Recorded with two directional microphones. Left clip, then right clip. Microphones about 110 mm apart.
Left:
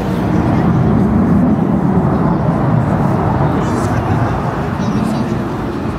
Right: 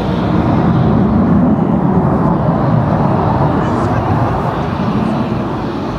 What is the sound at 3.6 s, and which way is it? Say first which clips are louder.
Vehicle: right 2 dB; 15° left (ahead or behind).